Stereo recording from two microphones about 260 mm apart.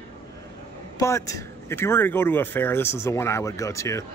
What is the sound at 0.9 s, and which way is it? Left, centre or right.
Speech, centre.